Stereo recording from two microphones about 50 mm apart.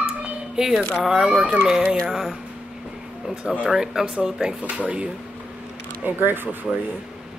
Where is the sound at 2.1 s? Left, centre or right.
Centre.